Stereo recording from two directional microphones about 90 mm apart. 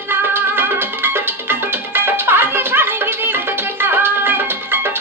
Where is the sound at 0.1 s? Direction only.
25° right (ahead or behind).